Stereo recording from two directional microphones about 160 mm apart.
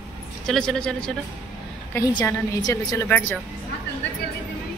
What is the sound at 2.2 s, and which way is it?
A woman's voice, 20° left (ahead or behind).